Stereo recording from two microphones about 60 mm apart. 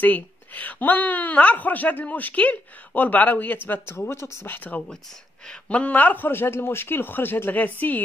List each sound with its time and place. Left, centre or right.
0.0 s a woman's voice: left
4.5 s a woman's voice: left
6.2 s speech: left